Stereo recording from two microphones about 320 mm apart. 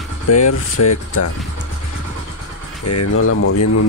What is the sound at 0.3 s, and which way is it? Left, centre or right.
Speech, left.